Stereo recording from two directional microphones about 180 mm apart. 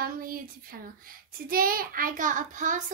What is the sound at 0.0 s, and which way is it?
Speech, 55° right (ahead or behind).